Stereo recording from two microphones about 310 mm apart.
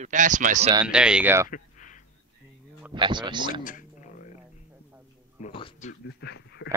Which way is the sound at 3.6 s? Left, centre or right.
Left.